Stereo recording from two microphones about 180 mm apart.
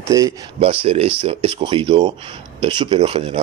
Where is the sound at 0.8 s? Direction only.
30° right (ahead or behind).